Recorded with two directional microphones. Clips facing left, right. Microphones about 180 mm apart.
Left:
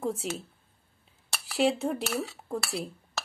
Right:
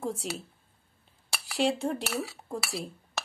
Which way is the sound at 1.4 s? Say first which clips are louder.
Left 2 dB; centre (ahead or behind).